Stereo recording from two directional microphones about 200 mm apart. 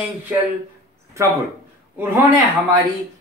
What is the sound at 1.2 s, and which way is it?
Speech, 15° right (ahead or behind).